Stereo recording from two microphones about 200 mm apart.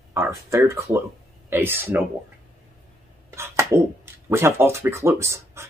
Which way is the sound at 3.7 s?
15° right (ahead or behind).